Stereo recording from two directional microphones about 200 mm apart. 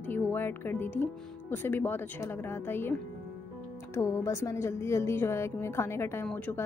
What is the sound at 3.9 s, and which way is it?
Speech, 15° left (ahead or behind).